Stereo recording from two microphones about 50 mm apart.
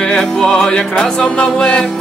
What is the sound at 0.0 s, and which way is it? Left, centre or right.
Music, centre.